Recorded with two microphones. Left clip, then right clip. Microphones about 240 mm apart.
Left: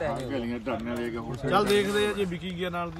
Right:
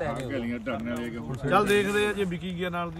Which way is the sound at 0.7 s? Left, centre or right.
Centre.